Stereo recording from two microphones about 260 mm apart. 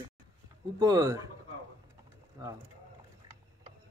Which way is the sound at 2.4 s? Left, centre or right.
Centre.